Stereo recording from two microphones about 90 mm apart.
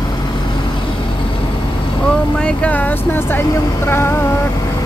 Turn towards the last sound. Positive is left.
turn(degrees=25)  # may be behind; listen again after turning